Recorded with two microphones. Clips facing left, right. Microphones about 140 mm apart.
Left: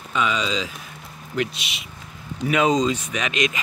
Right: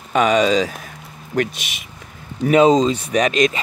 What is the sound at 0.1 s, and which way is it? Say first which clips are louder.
Speech: right 9 dB; 50° right (ahead or behind).